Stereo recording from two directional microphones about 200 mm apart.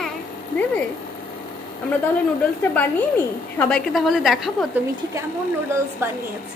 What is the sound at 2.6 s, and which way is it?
A woman's voice, 10° left (ahead or behind).